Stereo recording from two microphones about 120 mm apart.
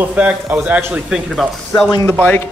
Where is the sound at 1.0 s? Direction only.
Centre (ahead or behind).